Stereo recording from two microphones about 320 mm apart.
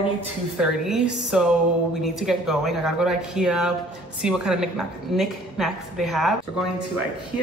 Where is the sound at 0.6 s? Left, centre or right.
Centre.